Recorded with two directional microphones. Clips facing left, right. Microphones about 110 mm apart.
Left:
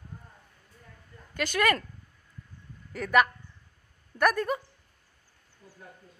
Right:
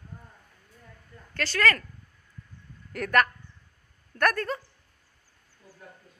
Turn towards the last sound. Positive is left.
turn(degrees=10)  # may be behind; listen again after turning